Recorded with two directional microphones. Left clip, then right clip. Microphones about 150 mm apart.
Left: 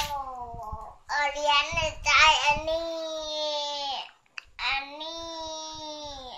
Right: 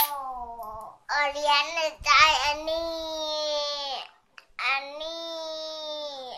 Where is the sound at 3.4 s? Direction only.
60° right (ahead or behind).